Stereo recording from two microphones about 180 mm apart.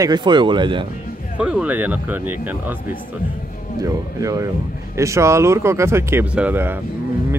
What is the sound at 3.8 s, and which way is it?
Speech, 20° right (ahead or behind).